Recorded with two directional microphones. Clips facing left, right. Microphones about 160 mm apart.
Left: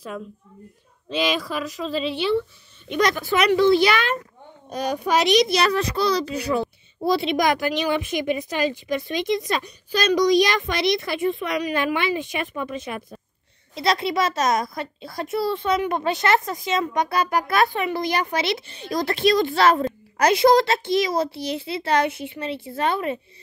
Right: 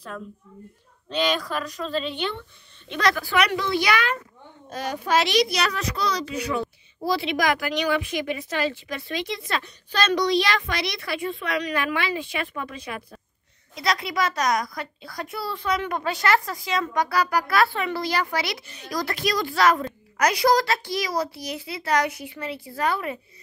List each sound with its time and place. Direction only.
1.1 s a woman's voice: 5° left (ahead or behind)
2.9 s a child's voice: 20° left (ahead or behind)
7.1 s a child's voice: 20° left (ahead or behind)